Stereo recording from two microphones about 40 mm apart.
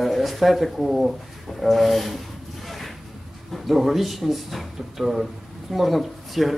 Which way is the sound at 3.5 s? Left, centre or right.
Centre.